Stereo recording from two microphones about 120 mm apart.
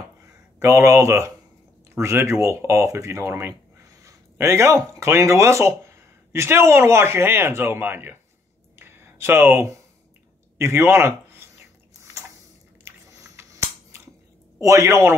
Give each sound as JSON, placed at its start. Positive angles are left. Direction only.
{"t": 0.6, "sound": "speech", "side_deg": -25}
{"t": 8.7, "sound": "a sound", "side_deg": -20}
{"t": 14.6, "sound": "speech", "side_deg": -25}